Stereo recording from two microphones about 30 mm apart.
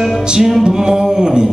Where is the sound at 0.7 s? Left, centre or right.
Right.